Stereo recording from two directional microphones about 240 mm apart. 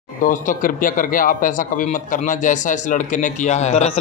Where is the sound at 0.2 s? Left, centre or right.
Left.